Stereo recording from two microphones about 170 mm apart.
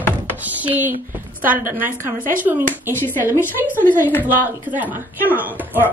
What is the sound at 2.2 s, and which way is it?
Speech, 55° right (ahead or behind).